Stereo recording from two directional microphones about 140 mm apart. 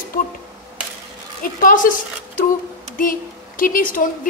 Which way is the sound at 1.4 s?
75° left (ahead or behind).